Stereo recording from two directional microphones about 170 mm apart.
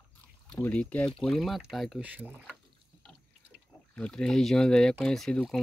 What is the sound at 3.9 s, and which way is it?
Speech, 5° left (ahead or behind).